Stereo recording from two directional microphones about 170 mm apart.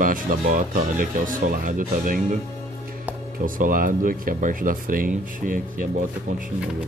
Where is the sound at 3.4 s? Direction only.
55° right (ahead or behind).